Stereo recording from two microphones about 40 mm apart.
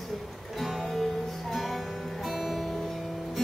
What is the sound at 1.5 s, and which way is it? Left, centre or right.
Music, centre.